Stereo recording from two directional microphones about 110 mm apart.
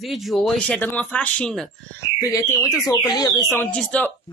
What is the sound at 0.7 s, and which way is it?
Speech, 15° left (ahead or behind).